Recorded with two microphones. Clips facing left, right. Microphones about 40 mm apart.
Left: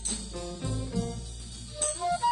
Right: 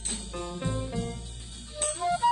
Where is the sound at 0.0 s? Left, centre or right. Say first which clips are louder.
Right 2 dB; right.